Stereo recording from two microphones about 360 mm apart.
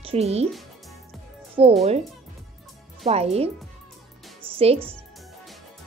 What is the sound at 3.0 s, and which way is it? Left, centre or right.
Speech, centre.